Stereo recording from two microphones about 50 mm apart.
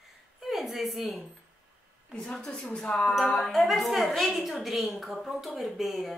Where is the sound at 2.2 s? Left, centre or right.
Centre.